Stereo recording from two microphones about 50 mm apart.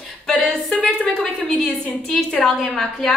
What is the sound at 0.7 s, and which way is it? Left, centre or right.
Speech, left.